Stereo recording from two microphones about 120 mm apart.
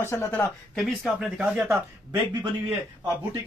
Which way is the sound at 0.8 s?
Centre (ahead or behind).